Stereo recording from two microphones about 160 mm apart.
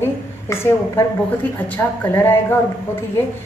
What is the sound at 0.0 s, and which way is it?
A woman's voice, 15° left (ahead or behind).